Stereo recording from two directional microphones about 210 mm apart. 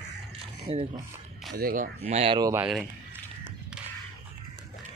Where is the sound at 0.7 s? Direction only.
30° right (ahead or behind).